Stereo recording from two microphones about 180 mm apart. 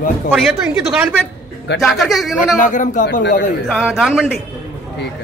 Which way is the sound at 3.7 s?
5° right (ahead or behind).